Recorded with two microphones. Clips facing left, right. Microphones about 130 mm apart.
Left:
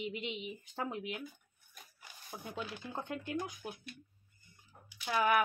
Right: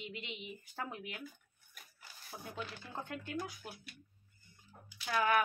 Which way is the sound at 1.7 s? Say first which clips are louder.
Left 2 dB; 20° left (ahead or behind).